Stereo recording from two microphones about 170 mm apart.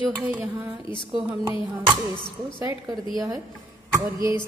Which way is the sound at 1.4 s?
20° right (ahead or behind).